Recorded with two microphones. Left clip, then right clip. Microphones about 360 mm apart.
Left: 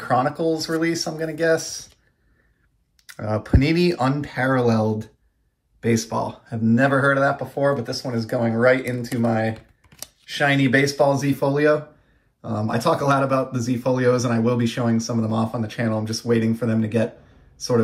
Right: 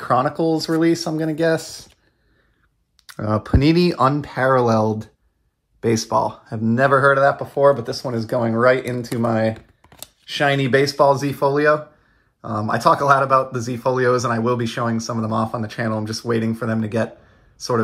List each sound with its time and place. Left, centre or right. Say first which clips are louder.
0.2 s speech: right 2 dB; centre
3.3 s speech: right 3 dB; centre